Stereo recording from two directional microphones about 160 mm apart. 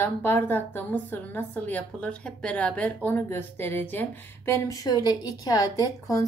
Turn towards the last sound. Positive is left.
turn(degrees=25)  # may be behind; listen again after turning